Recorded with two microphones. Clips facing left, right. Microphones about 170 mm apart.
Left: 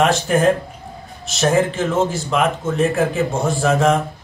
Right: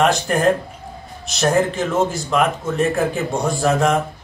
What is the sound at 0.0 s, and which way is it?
Speech, centre (ahead or behind).